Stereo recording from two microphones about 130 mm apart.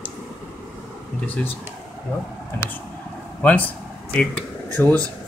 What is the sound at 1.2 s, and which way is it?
Speech, 10° left (ahead or behind).